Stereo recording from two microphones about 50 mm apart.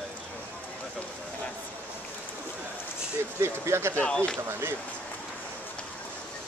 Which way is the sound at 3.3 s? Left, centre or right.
Right.